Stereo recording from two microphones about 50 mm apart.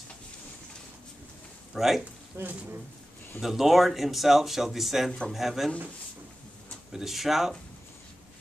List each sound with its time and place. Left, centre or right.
1.7 s speech: centre
2.4 s speech: right
3.3 s speech: centre
6.9 s speech: centre